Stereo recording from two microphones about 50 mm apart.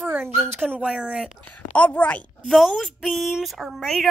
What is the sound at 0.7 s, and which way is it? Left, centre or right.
Speech, centre.